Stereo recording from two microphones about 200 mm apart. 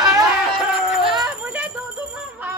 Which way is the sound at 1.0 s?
Centre (ahead or behind).